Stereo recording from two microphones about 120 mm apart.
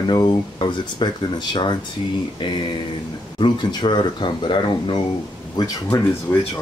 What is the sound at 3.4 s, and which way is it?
Speech, 40° left (ahead or behind).